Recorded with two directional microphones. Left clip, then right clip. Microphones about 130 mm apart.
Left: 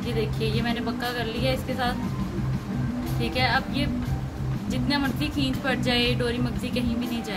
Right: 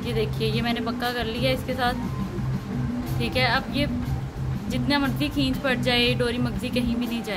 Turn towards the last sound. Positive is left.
turn(degrees=-70)  # may be behind; listen again after turning